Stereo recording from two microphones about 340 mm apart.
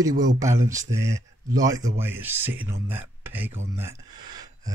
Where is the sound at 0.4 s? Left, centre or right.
Centre.